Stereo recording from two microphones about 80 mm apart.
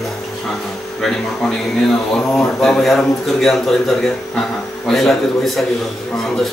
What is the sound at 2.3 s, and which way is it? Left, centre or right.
Speech, centre.